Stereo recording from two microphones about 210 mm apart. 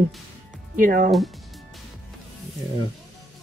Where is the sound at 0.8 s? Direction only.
40° right (ahead or behind).